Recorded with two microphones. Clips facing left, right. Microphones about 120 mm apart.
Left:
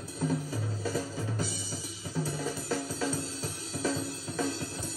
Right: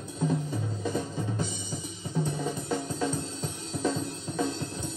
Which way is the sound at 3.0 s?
5° left (ahead or behind).